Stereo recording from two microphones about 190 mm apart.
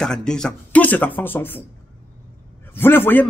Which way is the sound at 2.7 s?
10° left (ahead or behind).